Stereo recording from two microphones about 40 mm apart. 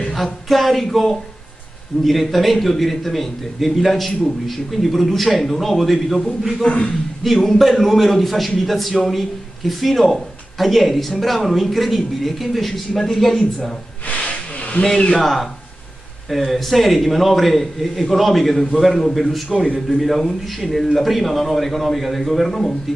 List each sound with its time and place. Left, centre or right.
0.1 s a man's voice: centre
6.6 s a man's voice: left
7.4 s a man's voice: centre
14.0 s hiss: left
14.7 s a man's voice: centre
15.1 s a man's voice: centre
19.5 s a man's voice: left
19.9 s a man's voice: centre